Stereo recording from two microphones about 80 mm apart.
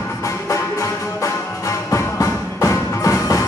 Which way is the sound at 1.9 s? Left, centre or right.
Left.